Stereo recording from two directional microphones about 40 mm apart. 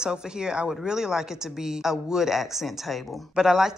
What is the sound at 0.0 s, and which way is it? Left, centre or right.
Speech, centre.